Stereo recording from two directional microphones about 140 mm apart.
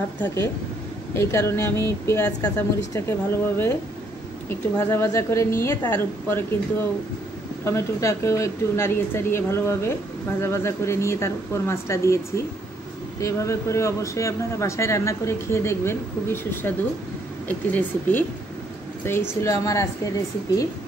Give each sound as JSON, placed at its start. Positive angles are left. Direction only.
{"t": 0.2, "sound": "speech", "side_deg": 20}
{"t": 4.7, "sound": "a woman's voice", "side_deg": 20}
{"t": 7.6, "sound": "speech", "side_deg": 20}
{"t": 13.2, "sound": "a woman's voice", "side_deg": 20}